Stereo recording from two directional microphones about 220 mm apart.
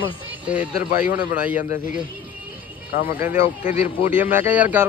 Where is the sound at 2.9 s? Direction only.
40° left (ahead or behind).